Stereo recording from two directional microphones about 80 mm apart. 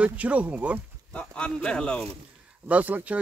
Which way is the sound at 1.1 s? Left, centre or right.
Centre.